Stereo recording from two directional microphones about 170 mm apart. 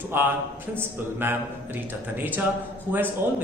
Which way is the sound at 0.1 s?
15° right (ahead or behind).